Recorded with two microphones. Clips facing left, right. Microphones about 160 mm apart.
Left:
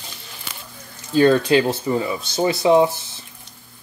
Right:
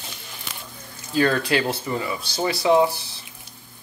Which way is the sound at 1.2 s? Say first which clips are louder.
Left 6 dB; 25° left (ahead or behind).